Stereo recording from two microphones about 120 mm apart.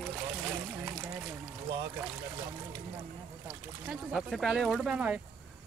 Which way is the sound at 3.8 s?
Centre (ahead or behind).